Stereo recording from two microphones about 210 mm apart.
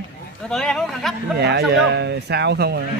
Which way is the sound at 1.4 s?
50° right (ahead or behind).